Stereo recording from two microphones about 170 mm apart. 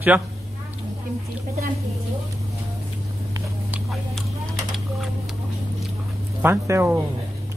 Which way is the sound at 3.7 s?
Centre (ahead or behind).